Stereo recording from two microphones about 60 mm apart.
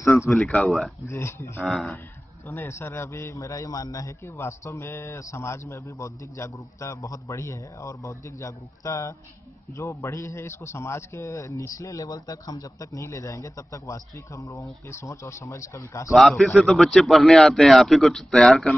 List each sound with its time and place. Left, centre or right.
0.0 s a sound: left
0.7 s a man's voice: centre
1.0 s speech: left
1.6 s a man's voice: centre
2.4 s a man's voice: left
4.4 s a man's voice: left
16.1 s a man's voice: centre